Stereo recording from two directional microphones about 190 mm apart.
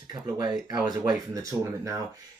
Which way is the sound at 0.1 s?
20° right (ahead or behind).